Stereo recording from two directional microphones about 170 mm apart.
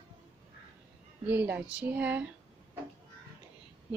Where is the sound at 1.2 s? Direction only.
10° right (ahead or behind).